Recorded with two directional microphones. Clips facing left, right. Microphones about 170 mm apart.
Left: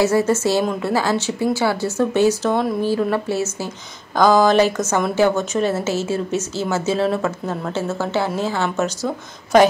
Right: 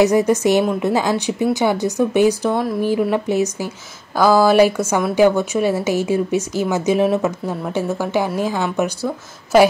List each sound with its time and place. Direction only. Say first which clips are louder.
0.0 s a woman's voice: right 3 dB; 15° right (ahead or behind)